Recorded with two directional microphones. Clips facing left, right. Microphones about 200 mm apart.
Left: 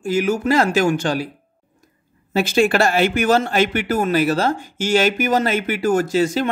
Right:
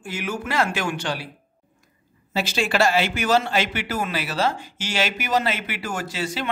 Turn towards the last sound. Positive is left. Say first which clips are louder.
# left 11 dB
turn(degrees=45)  # may be behind; listen again after turning